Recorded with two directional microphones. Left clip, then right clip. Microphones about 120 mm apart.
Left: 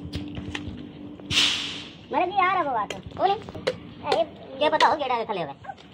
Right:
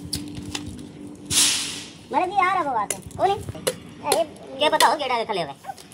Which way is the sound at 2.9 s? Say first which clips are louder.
Right 2 dB; 15° right (ahead or behind).